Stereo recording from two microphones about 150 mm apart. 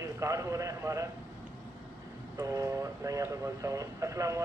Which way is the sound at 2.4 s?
20° right (ahead or behind).